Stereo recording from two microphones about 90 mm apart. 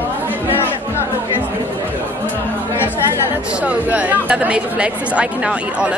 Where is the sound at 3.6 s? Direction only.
15° right (ahead or behind).